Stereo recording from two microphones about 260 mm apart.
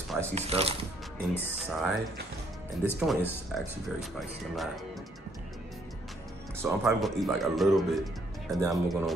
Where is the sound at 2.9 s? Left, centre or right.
Centre.